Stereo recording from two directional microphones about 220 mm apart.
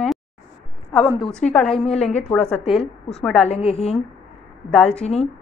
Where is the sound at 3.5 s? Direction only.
25° left (ahead or behind).